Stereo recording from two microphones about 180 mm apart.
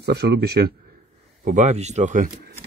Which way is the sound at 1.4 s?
40° right (ahead or behind).